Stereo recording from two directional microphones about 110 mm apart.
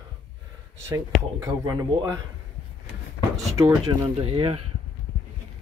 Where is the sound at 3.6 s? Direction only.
30° right (ahead or behind).